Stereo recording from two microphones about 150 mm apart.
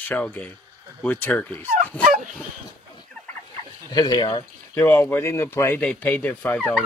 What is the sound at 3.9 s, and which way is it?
Speech, 25° left (ahead or behind).